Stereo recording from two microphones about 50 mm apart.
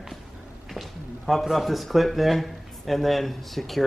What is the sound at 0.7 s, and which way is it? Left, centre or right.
Speech, centre.